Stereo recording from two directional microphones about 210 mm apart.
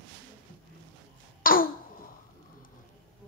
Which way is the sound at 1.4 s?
40° left (ahead or behind).